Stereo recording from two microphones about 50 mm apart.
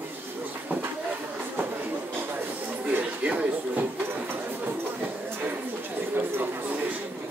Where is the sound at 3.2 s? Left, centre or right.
Right.